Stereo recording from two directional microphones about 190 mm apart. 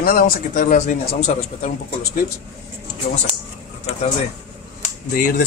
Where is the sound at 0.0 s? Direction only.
50° left (ahead or behind).